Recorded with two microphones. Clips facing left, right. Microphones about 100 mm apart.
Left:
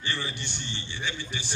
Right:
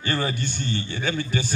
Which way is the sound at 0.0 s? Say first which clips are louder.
Right 8 dB; 50° right (ahead or behind).